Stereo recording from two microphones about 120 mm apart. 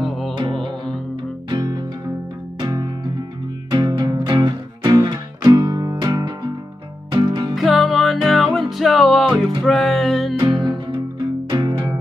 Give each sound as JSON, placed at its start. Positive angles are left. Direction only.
{"t": 0.0, "sound": "music", "side_deg": 0}
{"t": 0.4, "sound": "music", "side_deg": -45}
{"t": 1.5, "sound": "music", "side_deg": -35}
{"t": 7.5, "sound": "music", "side_deg": 0}
{"t": 10.4, "sound": "music", "side_deg": -40}